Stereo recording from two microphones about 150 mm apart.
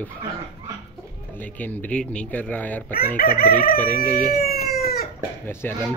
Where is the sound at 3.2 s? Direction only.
80° left.